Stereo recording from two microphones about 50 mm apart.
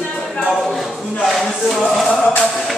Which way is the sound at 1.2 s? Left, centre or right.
Centre.